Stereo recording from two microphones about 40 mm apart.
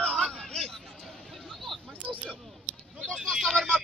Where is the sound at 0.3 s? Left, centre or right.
Centre.